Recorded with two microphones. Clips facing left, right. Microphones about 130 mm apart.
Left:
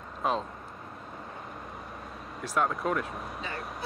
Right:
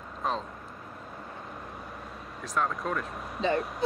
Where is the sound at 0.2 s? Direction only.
5° left (ahead or behind).